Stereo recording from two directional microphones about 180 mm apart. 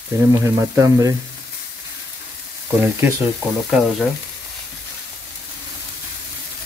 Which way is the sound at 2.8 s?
10° right (ahead or behind).